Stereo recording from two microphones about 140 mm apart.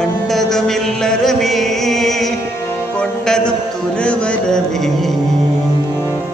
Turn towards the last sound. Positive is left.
turn(degrees=5)  # may be behind; listen again after turning